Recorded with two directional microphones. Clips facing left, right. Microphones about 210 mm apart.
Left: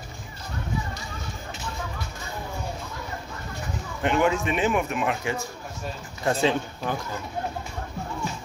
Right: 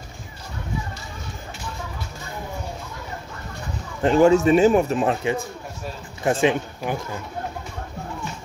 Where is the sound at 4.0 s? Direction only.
35° right (ahead or behind).